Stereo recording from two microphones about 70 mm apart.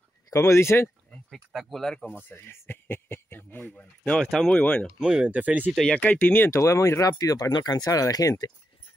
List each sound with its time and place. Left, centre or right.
0.3 s speech: left
1.5 s speech: centre
2.0 s speech: left
4.2 s speech: centre
4.5 s speech: centre
4.8 s speech: centre
5.9 s speech: left
6.6 s speech: left
7.8 s speech: left